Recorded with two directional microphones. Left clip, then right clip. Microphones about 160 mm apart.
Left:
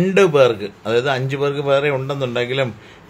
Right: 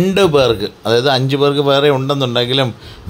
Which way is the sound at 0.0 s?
25° right (ahead or behind).